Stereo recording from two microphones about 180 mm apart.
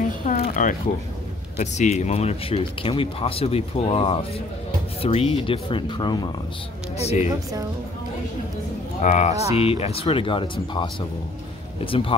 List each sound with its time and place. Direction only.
0.2 s a sound: 50° left (ahead or behind)
1.6 s speech: 40° left (ahead or behind); by 6.2 s 25° left (ahead or behind)
7.0 s speech: 35° left (ahead or behind)
9.0 s speech: 40° left (ahead or behind)